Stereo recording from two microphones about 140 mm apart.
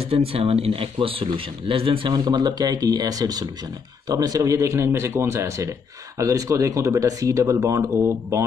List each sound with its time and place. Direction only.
0.3 s speech: 45° right (ahead or behind); by 8.5 s 20° right (ahead or behind)